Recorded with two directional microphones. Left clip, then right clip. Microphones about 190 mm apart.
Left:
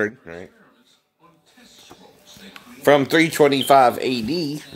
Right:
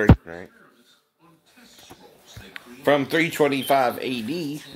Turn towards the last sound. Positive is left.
turn(degrees=20)  # may be behind; listen again after turning